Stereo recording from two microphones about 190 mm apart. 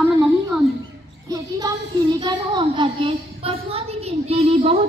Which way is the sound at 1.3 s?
20° right (ahead or behind).